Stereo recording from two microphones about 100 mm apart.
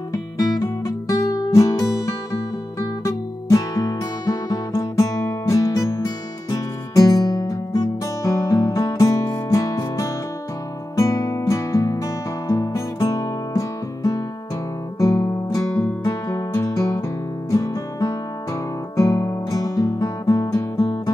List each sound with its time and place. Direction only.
0.1 s music: 35° left (ahead or behind)
15.0 s guitar: 35° left (ahead or behind)
17.5 s music: 35° left (ahead or behind)